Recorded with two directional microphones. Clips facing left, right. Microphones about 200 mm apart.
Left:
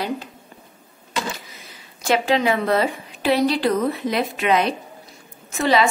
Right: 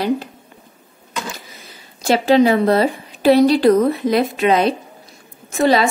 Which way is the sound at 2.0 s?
35° right (ahead or behind).